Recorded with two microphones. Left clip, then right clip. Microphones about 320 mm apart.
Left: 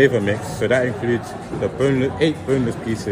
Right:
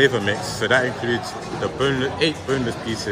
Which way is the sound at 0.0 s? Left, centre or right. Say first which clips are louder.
Left 2 dB; centre.